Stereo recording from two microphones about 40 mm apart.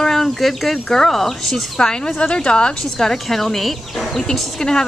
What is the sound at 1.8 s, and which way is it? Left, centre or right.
A woman's voice, centre.